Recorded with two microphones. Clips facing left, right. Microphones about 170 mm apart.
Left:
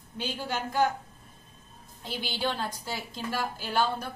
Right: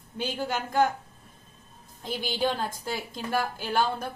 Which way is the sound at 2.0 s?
50° right (ahead or behind).